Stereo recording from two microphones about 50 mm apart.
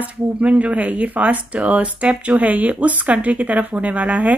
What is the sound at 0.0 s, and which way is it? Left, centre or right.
Speech, right.